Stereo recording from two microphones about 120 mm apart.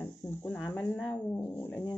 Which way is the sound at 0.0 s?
20° left (ahead or behind).